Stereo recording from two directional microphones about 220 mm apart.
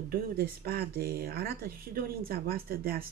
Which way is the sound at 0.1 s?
45° right (ahead or behind).